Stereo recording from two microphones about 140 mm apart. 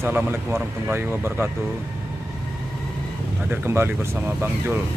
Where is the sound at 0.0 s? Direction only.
15° right (ahead or behind).